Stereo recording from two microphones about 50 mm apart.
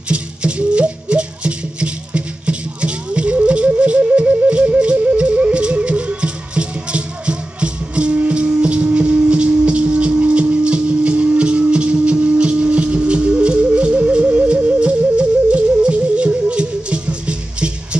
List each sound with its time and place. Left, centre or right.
0.1 s music: right